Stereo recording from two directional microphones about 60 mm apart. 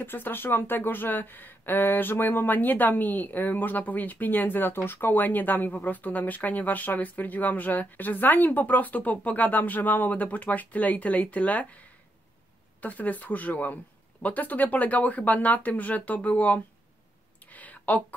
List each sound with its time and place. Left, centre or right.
0.0 s speech: left
12.8 s speech: left
17.5 s a sound: left